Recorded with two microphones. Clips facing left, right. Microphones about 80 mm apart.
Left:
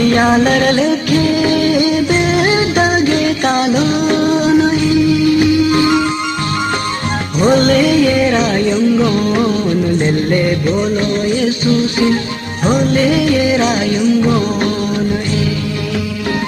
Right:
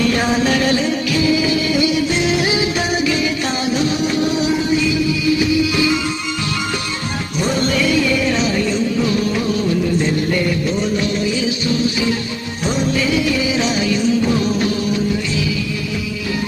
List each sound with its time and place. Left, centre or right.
0.1 s music: left
7.3 s music: left
12.6 s music: left